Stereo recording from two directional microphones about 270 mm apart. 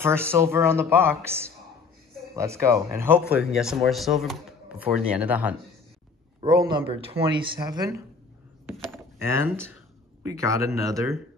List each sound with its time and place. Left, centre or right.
0.0 s speech: centre
9.5 s speech: centre